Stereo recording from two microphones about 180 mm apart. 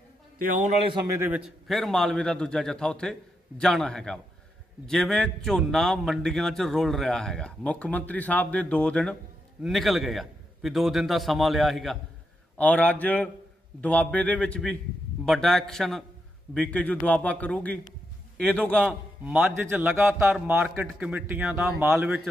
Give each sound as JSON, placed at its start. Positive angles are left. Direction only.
{"t": 0.4, "sound": "a man's voice", "side_deg": -50}
{"t": 1.0, "sound": "a man's voice", "side_deg": -15}
{"t": 19.2, "sound": "a man's voice", "side_deg": -10}